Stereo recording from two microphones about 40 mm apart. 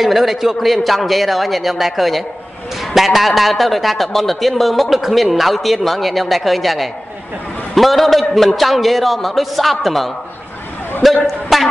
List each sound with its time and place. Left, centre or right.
0.0 s a man's voice: centre